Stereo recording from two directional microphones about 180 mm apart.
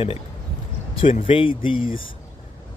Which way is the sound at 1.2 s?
30° left (ahead or behind).